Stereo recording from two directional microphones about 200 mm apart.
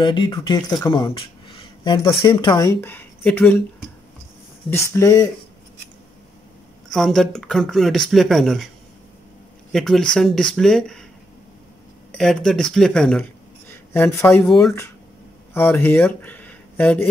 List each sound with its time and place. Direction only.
0.0 s speech: 25° left (ahead or behind); by 3.5 s 10° left (ahead or behind)
4.6 s speech: 15° left (ahead or behind)
6.9 s speech: centre (ahead or behind)
9.7 s speech: centre (ahead or behind)
12.1 s speech: 5° left (ahead or behind)
13.7 s a sound: 10° left (ahead or behind)
14.4 s speech: centre (ahead or behind)